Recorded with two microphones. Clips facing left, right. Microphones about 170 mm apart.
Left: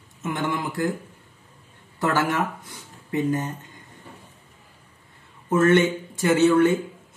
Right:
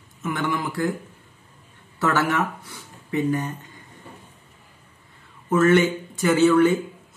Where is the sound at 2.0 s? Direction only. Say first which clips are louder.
Right 1 dB; 20° left (ahead or behind).